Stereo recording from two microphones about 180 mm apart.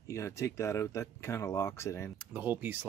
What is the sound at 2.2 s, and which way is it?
Speech, 10° right (ahead or behind).